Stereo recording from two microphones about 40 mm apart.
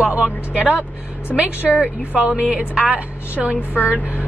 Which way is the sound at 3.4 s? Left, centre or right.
Right.